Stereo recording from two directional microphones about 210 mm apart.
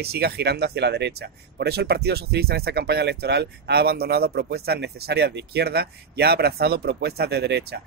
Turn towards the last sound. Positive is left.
turn(degrees=-50)  # may be behind; listen again after turning